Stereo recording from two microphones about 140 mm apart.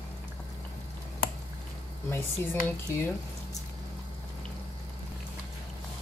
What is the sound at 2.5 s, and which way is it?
Speech, 15° left (ahead or behind).